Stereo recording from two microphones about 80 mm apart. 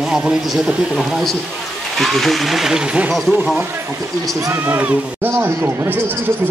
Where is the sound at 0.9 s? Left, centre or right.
Centre.